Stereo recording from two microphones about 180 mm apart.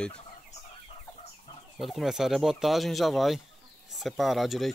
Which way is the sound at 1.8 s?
Centre (ahead or behind).